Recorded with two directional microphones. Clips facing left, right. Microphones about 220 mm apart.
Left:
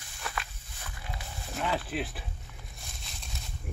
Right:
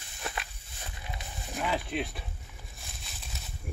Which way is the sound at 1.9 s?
5° left (ahead or behind).